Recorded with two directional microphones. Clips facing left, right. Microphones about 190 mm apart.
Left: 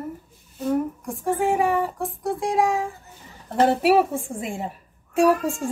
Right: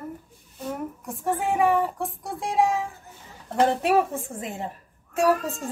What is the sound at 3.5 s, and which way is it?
A woman's voice, 10° left (ahead or behind).